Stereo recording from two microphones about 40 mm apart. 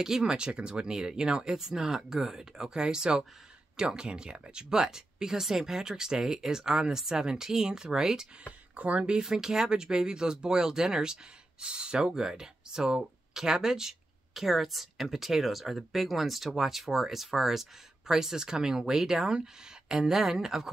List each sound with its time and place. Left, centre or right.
0.0 s speech: centre
8.7 s speech: right
9.2 s speech: centre